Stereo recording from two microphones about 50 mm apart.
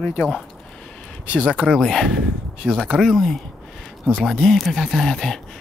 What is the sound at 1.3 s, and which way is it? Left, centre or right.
Speech, right.